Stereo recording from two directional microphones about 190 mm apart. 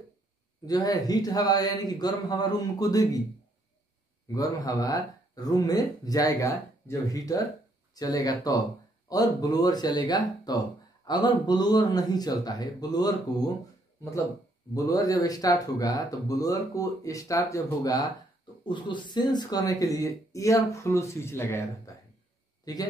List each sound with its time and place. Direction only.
0.7 s speech: 20° left (ahead or behind)
4.3 s speech: 20° left (ahead or behind)
14.7 s speech: 20° left (ahead or behind)